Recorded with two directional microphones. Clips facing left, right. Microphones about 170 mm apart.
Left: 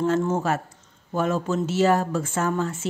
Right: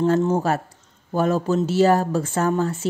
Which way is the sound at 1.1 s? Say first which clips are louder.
Right 4 dB; 35° right (ahead or behind).